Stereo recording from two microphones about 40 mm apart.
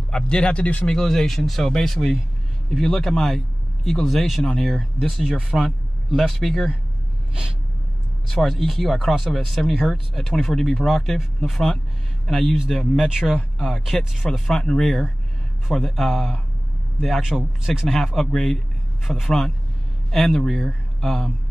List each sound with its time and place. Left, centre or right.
0.1 s speech: left
0.8 s a man's voice: centre
8.3 s speech: centre
13.7 s speech: centre
14.1 s speech: centre
14.6 s speech: centre